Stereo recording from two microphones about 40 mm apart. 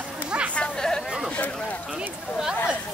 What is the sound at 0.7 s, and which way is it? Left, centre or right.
Chatter, centre.